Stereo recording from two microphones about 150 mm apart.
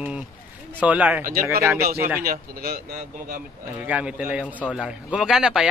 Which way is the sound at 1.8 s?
90° right.